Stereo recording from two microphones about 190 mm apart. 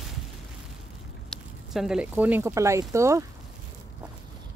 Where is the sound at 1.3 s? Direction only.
Centre (ahead or behind).